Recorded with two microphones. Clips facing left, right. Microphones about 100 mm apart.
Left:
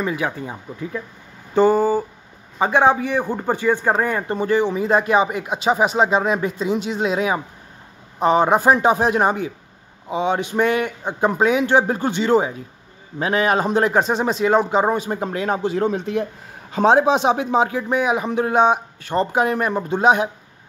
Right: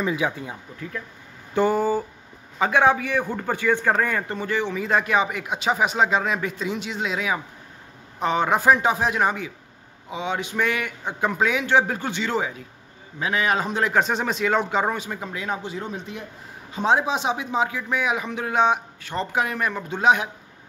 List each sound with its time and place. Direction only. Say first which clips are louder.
0.1 s speech: left 1 dB; 10° right (ahead or behind)
0.7 s speech: left 6 dB; 15° left (ahead or behind)
2.6 s a man's voice: left 3 dB; 20° left (ahead or behind)
4.4 s a man's voice: left 7 dB; 40° left (ahead or behind)
13.8 s speech: left 4 dB; 35° left (ahead or behind); by 16.3 s 80° left
16.7 s speech: left 7 dB; 65° left (ahead or behind); by 20.2 s 35° left (ahead or behind)